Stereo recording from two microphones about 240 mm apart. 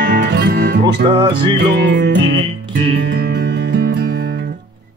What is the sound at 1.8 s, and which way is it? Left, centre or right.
Music, right.